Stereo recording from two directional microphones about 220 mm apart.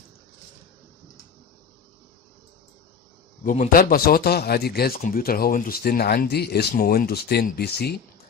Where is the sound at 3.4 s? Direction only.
35° left (ahead or behind).